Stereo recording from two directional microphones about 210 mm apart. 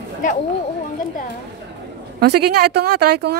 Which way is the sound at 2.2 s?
50° right (ahead or behind).